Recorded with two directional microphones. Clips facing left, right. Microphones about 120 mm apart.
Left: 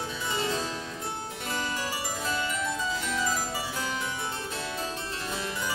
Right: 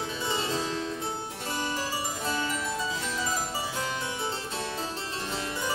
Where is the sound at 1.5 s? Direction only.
30° right (ahead or behind).